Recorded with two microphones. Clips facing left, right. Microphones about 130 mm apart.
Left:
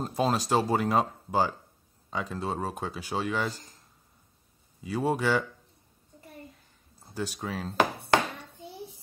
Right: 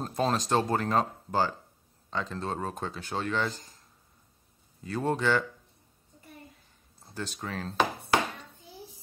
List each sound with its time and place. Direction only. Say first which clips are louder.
0.0 s speech: left 1 dB; 5° left (ahead or behind)
4.8 s speech: left 1 dB; 10° left (ahead or behind)
7.1 s speech: left 3 dB; 10° left (ahead or behind)